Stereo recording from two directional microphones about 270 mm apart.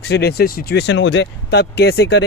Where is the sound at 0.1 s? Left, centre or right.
Left.